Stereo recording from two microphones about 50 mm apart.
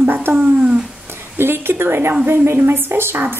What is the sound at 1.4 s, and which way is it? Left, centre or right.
A woman's voice, right.